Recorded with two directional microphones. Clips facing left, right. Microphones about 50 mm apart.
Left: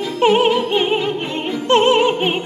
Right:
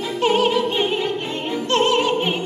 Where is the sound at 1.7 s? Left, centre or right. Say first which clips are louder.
Left 5 dB; left.